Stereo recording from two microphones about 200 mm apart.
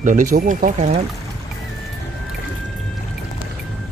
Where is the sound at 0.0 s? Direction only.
40° right (ahead or behind).